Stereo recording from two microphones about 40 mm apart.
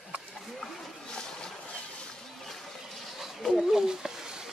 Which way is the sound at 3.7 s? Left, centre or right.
Centre.